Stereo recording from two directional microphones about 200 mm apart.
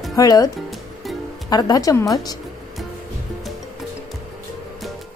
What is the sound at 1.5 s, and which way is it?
Speech, 20° left (ahead or behind).